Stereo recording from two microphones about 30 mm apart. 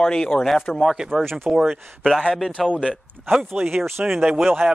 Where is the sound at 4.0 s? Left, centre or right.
Right.